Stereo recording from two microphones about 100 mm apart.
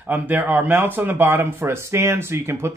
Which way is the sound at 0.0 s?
20° right (ahead or behind).